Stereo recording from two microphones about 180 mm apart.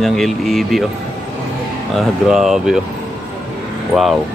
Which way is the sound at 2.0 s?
Centre (ahead or behind).